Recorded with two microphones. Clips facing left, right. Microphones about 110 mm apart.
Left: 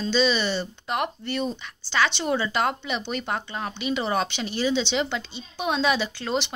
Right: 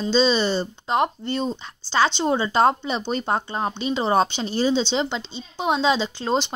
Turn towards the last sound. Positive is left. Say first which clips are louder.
# right 4 dB
turn(degrees=-30)  # may be behind; listen again after turning